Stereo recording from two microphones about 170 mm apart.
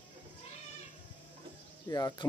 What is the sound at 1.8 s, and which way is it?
Speech, 20° left (ahead or behind).